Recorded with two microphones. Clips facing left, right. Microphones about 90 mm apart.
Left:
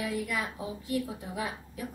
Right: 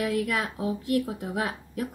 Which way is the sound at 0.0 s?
80° right.